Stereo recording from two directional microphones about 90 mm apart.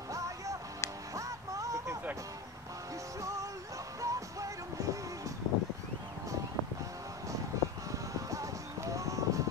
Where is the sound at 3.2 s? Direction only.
35° right (ahead or behind).